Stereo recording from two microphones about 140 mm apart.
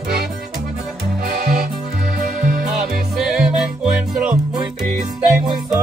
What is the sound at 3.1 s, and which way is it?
Music, 5° right (ahead or behind).